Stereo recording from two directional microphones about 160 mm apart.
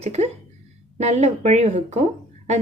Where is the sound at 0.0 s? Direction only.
45° right (ahead or behind).